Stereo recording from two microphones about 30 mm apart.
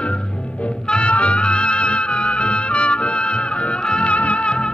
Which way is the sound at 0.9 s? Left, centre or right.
Left.